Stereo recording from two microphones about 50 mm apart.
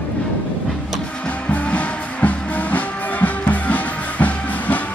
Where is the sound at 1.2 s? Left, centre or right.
Left.